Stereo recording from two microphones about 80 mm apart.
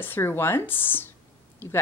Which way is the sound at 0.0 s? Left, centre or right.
Left.